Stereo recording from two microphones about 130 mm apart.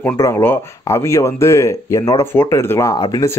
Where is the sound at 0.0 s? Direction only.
20° left (ahead or behind).